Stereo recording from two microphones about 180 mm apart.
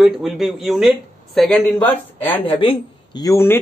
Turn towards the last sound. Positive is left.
turn(degrees=15)  # may be behind; listen again after turning